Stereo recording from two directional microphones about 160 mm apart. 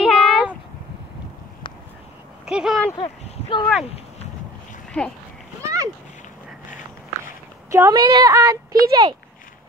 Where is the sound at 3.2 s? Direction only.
40° left (ahead or behind).